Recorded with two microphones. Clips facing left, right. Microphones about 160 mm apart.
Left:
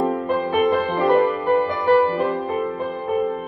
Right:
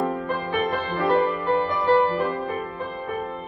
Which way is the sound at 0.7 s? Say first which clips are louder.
Left 4 dB; 20° left (ahead or behind).